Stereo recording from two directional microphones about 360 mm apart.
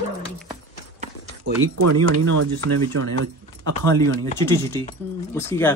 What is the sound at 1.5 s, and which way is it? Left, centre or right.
Speech, right.